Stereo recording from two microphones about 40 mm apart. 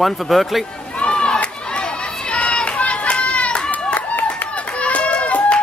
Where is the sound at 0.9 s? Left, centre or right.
Left.